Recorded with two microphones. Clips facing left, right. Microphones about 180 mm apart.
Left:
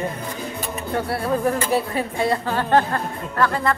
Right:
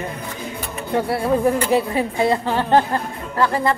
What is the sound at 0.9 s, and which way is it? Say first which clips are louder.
A woman's voice: right 4 dB; 15° right (ahead or behind).